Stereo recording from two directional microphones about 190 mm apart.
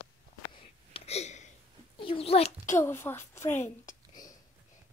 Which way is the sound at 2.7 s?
10° left (ahead or behind).